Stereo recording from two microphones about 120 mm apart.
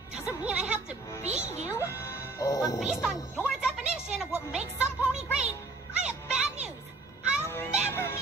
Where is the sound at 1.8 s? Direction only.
20° left (ahead or behind).